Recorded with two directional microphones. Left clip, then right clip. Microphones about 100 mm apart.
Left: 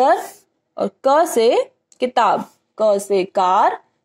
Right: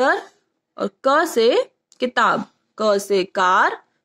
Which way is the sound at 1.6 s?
15° left (ahead or behind).